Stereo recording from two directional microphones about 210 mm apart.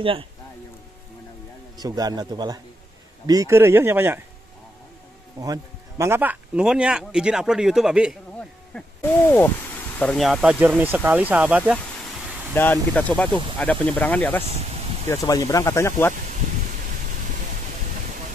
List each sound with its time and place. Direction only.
0.0 s speech: 25° right (ahead or behind)
1.8 s speech: 20° right (ahead or behind)
5.4 s speech: 15° right (ahead or behind); by 8.8 s centre (ahead or behind)
9.9 s speech: 5° left (ahead or behind)
12.5 s speech: 10° left (ahead or behind)